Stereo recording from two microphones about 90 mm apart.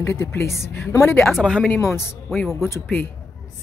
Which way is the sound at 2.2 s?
Centre (ahead or behind).